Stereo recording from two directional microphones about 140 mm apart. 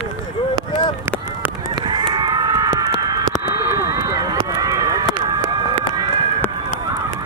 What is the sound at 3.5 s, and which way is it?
Run, 20° right (ahead or behind).